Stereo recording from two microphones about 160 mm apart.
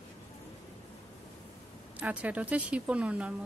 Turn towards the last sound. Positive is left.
turn(degrees=-5)  # may be behind; listen again after turning